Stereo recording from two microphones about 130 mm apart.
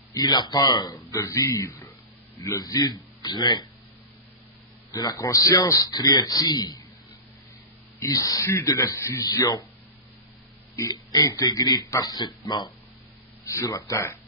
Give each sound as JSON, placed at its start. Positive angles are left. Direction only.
{"t": 0.1, "sound": "a man's voice", "side_deg": 35}
{"t": 4.9, "sound": "a man's voice", "side_deg": 25}
{"t": 8.1, "sound": "a man's voice", "side_deg": 25}
{"t": 10.8, "sound": "a man's voice", "side_deg": 30}